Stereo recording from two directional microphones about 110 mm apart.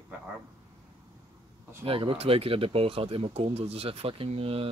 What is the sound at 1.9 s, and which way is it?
Speech, 55° right (ahead or behind).